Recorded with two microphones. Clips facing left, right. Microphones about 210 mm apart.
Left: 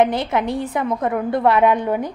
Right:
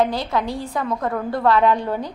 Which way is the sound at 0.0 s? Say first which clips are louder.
Left 3 dB; 20° left (ahead or behind).